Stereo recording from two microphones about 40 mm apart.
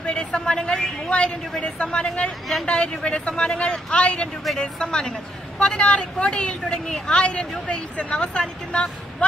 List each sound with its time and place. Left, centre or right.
0.0 s a woman's voice: left
4.6 s a woman's voice: centre